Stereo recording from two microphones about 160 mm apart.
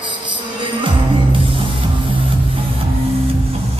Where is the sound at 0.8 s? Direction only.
30° right (ahead or behind).